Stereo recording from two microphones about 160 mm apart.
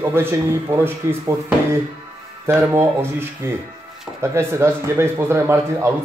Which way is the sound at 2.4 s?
15° right (ahead or behind).